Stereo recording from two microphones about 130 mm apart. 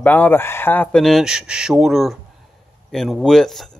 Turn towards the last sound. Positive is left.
turn(degrees=5)  # may be behind; listen again after turning